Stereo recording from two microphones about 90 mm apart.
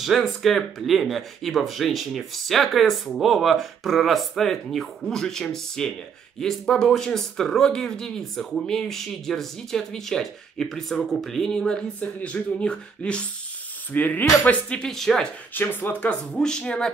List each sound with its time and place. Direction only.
0.0 s speech: centre (ahead or behind); by 14.8 s 20° left (ahead or behind)
14.8 s speech: 5° left (ahead or behind)
15.5 s speech: 20° left (ahead or behind)